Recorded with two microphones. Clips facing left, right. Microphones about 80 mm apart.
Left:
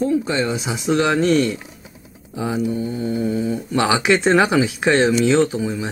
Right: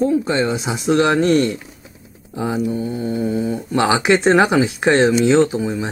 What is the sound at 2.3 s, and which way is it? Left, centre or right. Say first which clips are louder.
Speech: right 1 dB; centre.